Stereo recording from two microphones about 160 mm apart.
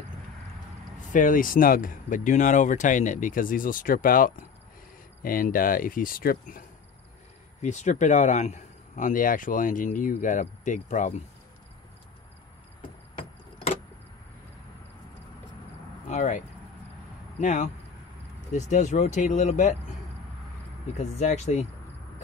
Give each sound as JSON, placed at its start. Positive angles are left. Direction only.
{"t": 1.1, "sound": "speech", "side_deg": 55}
{"t": 7.6, "sound": "speech", "side_deg": 50}
{"t": 16.1, "sound": "speech", "side_deg": 50}
{"t": 20.9, "sound": "speech", "side_deg": 45}